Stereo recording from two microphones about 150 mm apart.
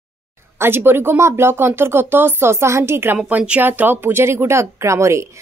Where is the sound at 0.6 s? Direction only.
15° right (ahead or behind).